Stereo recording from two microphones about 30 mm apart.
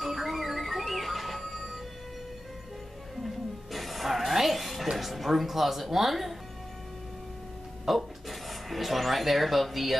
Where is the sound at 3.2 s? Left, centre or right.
Centre.